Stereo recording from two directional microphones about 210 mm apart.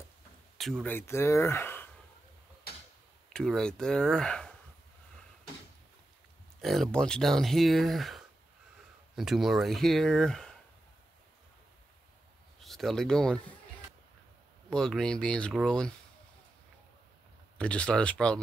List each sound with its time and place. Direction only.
0.6 s speech: centre (ahead or behind)
3.3 s speech: 5° left (ahead or behind)
6.6 s speech: centre (ahead or behind)
12.5 s speech: centre (ahead or behind)
14.7 s speech: 5° left (ahead or behind)
17.6 s speech: 5° left (ahead or behind)